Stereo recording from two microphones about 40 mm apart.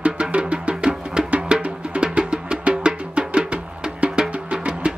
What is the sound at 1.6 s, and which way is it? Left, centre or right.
Music, right.